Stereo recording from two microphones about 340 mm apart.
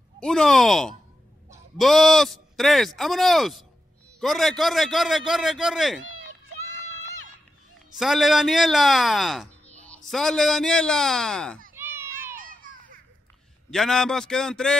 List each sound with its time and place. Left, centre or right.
0.2 s a man's voice: centre
6.0 s cat: right
8.0 s a man's voice: centre
11.7 s a sound: centre
12.4 s children playing: right
13.7 s a man's voice: centre